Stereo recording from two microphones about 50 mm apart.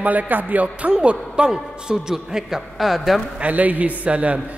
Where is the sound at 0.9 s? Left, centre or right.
Centre.